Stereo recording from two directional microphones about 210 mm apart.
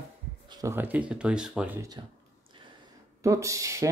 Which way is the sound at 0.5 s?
15° right (ahead or behind).